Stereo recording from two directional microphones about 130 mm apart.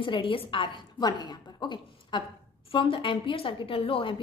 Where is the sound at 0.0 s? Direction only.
40° left (ahead or behind).